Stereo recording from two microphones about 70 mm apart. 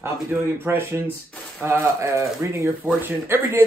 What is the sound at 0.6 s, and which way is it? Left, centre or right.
Speech, right.